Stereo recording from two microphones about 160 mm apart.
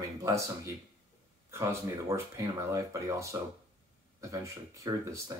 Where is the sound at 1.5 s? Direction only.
20° right (ahead or behind).